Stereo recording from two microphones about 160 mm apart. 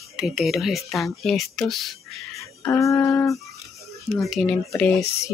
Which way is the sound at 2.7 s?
20° left (ahead or behind).